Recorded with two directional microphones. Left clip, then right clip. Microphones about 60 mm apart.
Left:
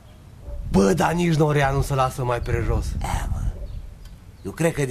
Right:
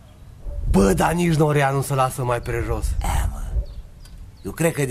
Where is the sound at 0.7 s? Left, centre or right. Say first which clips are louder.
Right 1 dB; right.